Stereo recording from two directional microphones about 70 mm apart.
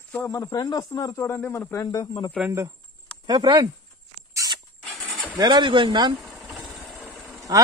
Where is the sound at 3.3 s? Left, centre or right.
Right.